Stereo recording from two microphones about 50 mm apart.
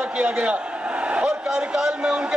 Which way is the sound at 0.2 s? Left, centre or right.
Right.